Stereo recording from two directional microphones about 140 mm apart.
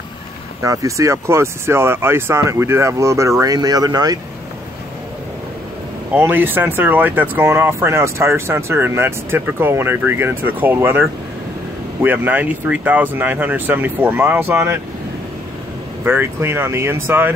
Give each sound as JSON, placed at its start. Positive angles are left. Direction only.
{"t": 0.6, "sound": "speech", "side_deg": -20}
{"t": 6.1, "sound": "speech", "side_deg": -15}
{"t": 16.0, "sound": "speech", "side_deg": -15}